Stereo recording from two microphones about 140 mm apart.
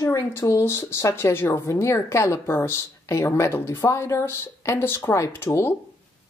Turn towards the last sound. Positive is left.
turn(degrees=20)  # may be behind; listen again after turning